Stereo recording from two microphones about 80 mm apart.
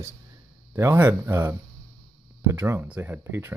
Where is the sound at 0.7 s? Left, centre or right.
Right.